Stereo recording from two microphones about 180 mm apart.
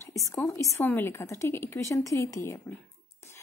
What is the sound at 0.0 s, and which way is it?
A woman's voice, 15° left (ahead or behind).